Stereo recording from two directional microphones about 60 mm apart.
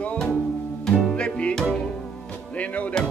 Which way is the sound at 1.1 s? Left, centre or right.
Centre.